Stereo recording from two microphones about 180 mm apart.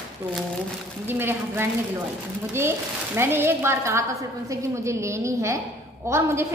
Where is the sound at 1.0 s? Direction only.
10° right (ahead or behind).